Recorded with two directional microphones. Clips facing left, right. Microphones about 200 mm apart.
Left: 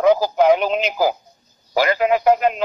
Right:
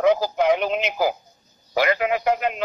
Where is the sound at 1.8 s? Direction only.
35° left (ahead or behind).